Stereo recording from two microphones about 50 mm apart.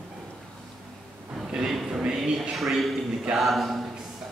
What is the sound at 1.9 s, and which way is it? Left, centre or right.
Speech, centre.